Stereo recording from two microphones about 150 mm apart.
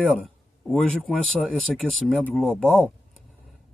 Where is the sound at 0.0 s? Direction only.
5° left (ahead or behind).